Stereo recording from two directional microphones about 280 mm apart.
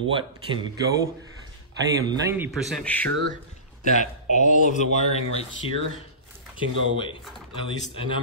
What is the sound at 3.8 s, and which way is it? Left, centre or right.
A man's voice, left.